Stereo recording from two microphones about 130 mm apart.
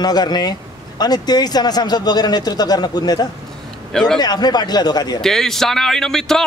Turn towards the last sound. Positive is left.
turn(degrees=5)  # may be behind; listen again after turning